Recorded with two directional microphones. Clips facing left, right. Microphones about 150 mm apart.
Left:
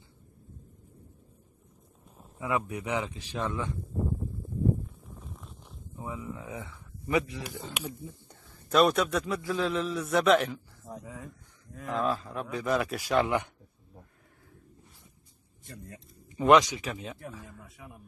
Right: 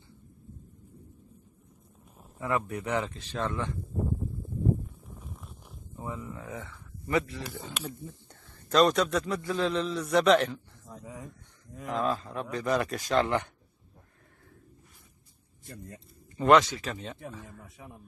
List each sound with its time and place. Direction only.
2.3 s speech: 5° left (ahead or behind)
5.9 s speech: 10° left (ahead or behind)
11.9 s speech: centre (ahead or behind)
15.9 s speech: 15° left (ahead or behind)
17.6 s speech: 25° right (ahead or behind)